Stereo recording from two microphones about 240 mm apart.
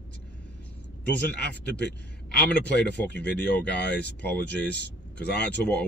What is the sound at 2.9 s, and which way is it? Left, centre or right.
Speech, centre.